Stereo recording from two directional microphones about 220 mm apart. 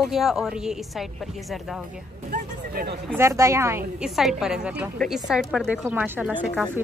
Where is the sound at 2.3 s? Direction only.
45° right (ahead or behind).